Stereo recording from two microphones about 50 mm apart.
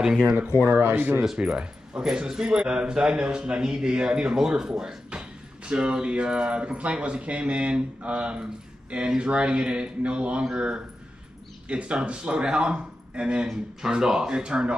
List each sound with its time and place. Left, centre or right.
0.7 s speech: right
1.4 s speech: centre
11.6 s speech: right